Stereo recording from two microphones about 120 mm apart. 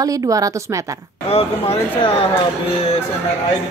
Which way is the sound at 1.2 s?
55° left (ahead or behind).